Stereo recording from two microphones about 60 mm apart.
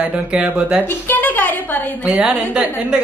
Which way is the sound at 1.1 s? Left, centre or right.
Left.